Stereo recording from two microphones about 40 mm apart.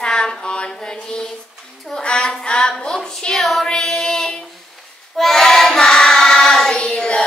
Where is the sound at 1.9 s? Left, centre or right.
Left.